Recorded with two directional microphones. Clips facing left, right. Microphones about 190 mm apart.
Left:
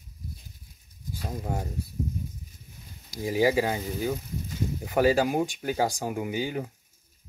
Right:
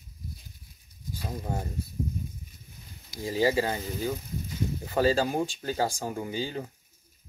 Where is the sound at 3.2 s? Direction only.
15° left (ahead or behind).